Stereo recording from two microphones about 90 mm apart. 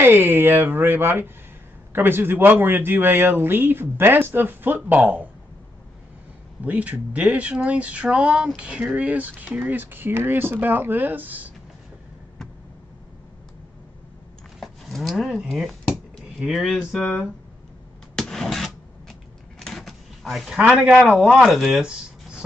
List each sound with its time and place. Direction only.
0.0 s a man's voice: 25° right (ahead or behind)
6.6 s a man's voice: 15° right (ahead or behind)
14.6 s speech: centre (ahead or behind)
18.1 s a sound: 5° left (ahead or behind)
20.5 s speech: 10° right (ahead or behind)